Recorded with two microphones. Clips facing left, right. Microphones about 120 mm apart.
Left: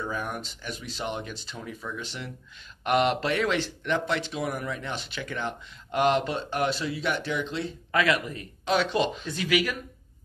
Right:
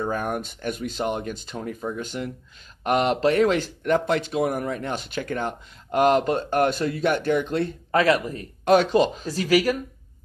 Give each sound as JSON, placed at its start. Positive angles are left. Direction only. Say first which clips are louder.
{"t": 0.0, "sound": "speech", "louder": "right 6 dB", "side_deg": -55}
{"t": 8.0, "sound": "speech", "louder": "right 5 dB", "side_deg": -40}